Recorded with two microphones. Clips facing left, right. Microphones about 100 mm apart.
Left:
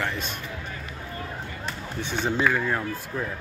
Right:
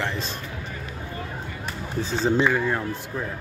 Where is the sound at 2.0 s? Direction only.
30° right (ahead or behind).